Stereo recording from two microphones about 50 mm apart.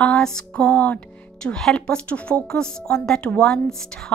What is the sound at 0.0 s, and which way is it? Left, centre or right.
Music, centre.